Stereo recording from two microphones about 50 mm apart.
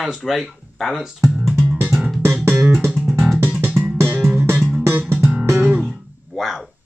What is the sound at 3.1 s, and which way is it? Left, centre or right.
Music, centre.